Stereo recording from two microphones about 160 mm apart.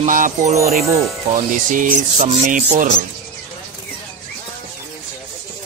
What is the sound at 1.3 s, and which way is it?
Speech, 55° right (ahead or behind).